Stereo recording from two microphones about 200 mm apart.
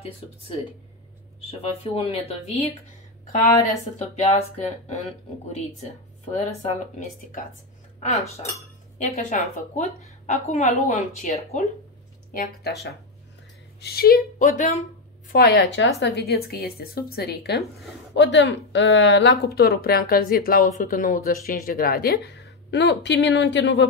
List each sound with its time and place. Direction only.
1.6 s a woman's voice: 30° left (ahead or behind)
6.3 s a woman's voice: 35° left (ahead or behind)
8.9 s a woman's voice: 35° left (ahead or behind)
13.7 s speech: 50° left (ahead or behind)
15.3 s a woman's voice: 55° left (ahead or behind)